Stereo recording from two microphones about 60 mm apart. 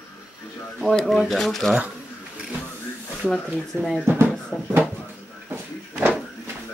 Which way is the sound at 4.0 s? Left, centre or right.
Right.